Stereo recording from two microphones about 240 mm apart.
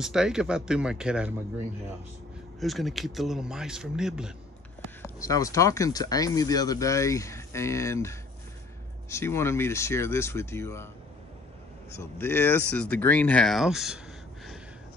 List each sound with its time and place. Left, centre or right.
0.0 s a man's voice: centre
2.6 s a man's voice: centre
5.2 s speech: centre
12.0 s speech: centre